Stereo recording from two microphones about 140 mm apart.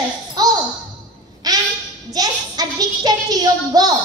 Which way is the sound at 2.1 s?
25° right (ahead or behind).